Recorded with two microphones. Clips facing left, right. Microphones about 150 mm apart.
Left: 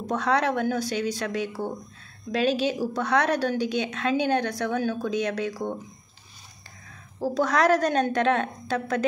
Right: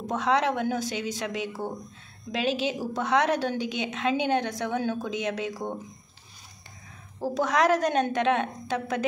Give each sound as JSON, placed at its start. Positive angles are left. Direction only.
{"t": 0.0, "sound": "a woman's voice", "side_deg": -20}
{"t": 7.3, "sound": "a woman's voice", "side_deg": -15}